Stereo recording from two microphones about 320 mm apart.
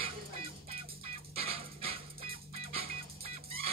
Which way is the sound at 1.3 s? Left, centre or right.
Centre.